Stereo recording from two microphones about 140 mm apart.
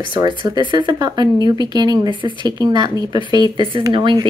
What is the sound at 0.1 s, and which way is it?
Speech, 35° right (ahead or behind).